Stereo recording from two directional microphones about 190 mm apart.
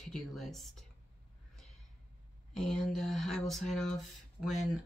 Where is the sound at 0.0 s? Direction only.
Centre (ahead or behind).